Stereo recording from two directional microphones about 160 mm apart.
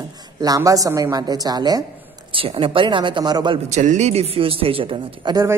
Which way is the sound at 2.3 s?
35° right (ahead or behind).